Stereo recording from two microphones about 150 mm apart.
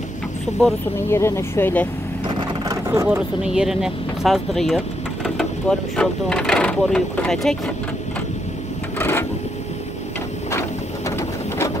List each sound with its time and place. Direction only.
0.9 s speech: 15° left (ahead or behind)
2.9 s speech: 15° right (ahead or behind); by 7.7 s 5° left (ahead or behind)
8.9 s sewing machine: 15° left (ahead or behind)
11.1 s a sound: 20° left (ahead or behind)